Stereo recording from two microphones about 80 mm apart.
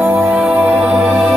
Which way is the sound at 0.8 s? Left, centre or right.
Centre.